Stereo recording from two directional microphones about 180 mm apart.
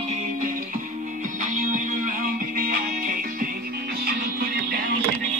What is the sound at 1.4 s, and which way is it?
Music, 45° right (ahead or behind).